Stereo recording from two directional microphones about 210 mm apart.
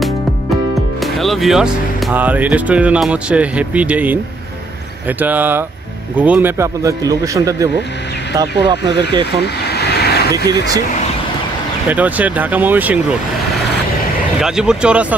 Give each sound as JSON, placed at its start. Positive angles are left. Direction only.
{"t": 1.0, "sound": "a man's voice", "side_deg": 0}
{"t": 9.3, "sound": "vehicle", "side_deg": 50}
{"t": 11.9, "sound": "a man's voice", "side_deg": -5}
{"t": 14.4, "sound": "speech", "side_deg": -5}